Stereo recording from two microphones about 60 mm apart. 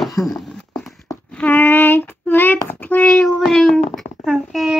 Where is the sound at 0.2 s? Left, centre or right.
Centre.